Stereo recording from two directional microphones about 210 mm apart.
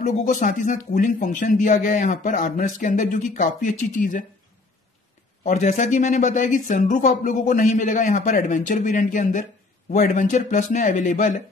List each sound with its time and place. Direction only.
0.0 s speech: 35° left (ahead or behind)
5.4 s speech: 35° left (ahead or behind)